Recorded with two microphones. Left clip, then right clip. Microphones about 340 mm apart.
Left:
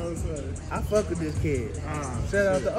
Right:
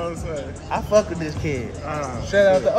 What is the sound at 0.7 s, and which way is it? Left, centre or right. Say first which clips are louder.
A man's voice: right 8 dB; right.